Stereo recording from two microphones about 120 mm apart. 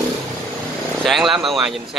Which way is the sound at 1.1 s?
Centre (ahead or behind).